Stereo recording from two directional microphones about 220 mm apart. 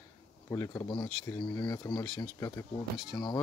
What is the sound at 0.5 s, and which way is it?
Speech, 15° left (ahead or behind).